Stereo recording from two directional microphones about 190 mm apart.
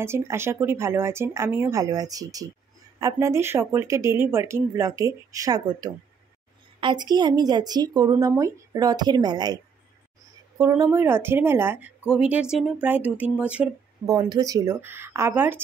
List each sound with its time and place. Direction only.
0.0 s speech: 15° right (ahead or behind)
10.6 s speech: 15° right (ahead or behind)
14.0 s speech: 20° right (ahead or behind)